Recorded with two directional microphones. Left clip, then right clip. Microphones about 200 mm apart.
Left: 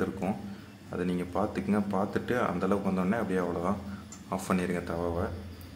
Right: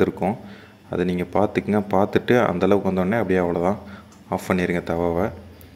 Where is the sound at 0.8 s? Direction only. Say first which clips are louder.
Right 9 dB; 30° right (ahead or behind).